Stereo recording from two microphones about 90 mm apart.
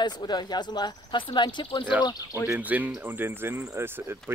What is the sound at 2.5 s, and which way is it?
Speech, 15° right (ahead or behind).